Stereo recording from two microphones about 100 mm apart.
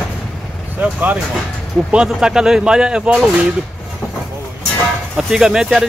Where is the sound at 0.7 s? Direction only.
15° right (ahead or behind).